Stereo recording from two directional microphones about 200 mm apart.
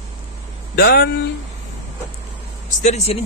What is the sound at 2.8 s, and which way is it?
Speech, 35° left (ahead or behind).